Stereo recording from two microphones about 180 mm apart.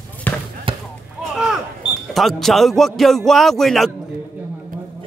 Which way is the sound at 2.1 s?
Centre (ahead or behind).